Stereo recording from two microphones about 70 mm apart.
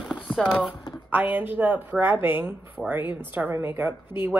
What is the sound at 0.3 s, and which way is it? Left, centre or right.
Speech, centre.